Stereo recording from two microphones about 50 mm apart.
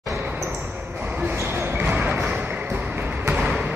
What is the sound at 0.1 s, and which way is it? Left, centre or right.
Basketball bounce, right.